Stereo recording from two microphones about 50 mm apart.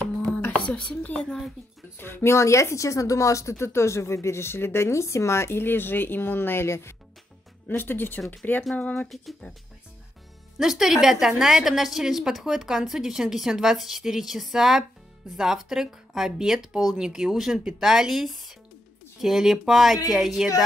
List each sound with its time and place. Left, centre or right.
0.5 s speech: left
2.0 s speech: left
2.3 s speech: left
6.7 s speech: left
7.6 s speech: left
9.1 s speech: centre
10.6 s a woman's voice: centre